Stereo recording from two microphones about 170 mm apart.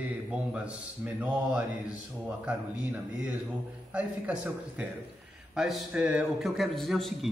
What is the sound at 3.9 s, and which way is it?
A man's voice, 10° right (ahead or behind).